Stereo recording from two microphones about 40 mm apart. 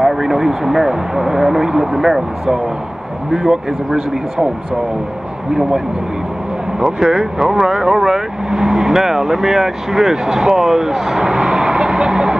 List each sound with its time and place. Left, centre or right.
0.0 s speech: centre
3.3 s speech: centre
5.5 s speech: centre
7.3 s speech: centre
11.2 s vehicle: centre